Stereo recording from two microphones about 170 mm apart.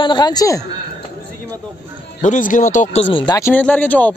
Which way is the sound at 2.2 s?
50° left (ahead or behind).